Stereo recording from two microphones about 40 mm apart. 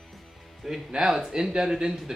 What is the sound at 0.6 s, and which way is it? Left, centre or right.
Music, centre.